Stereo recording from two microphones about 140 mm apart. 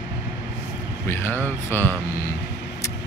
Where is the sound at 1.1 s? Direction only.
15° left (ahead or behind).